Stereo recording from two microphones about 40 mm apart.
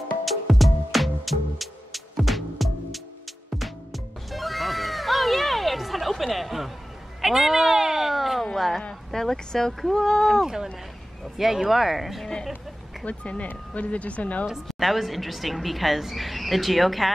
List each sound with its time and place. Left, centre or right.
0.2 s music: centre
7.2 s a sound: centre
9.1 s speech: centre
10.4 s a woman's voice: centre
13.0 s speech: left
14.4 s a woman's voice: centre